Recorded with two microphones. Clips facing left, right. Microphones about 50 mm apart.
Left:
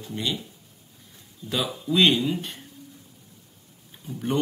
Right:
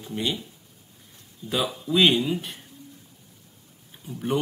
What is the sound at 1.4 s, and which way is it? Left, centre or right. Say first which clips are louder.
Speech: right 1 dB; centre.